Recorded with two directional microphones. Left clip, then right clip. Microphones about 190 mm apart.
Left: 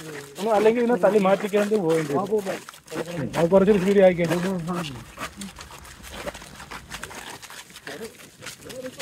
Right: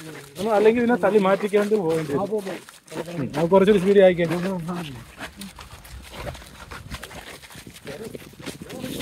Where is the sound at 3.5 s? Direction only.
45° right (ahead or behind).